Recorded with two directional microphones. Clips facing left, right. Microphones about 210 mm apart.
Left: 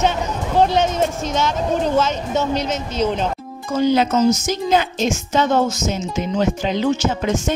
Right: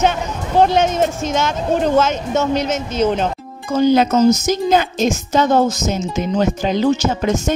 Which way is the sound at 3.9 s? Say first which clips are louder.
Right 3 dB; 45° right (ahead or behind).